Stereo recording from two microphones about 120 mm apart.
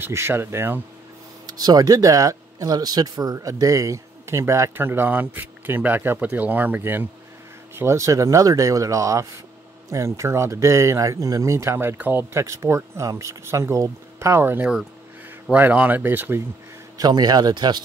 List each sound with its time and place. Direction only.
0.0 s speech: 20° right (ahead or behind)
1.5 s speech: 35° right (ahead or behind); by 16.4 s 15° right (ahead or behind)
17.0 s speech: 35° right (ahead or behind)